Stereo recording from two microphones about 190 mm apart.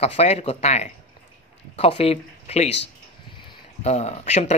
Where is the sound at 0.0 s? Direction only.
35° left (ahead or behind).